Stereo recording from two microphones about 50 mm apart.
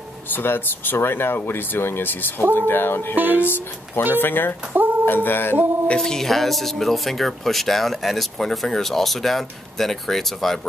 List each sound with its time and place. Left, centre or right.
0.3 s speech: left
3.2 s music: right
3.4 s speech: left
5.9 s speech: centre